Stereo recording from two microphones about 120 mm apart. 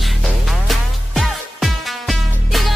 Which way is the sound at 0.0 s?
Centre (ahead or behind).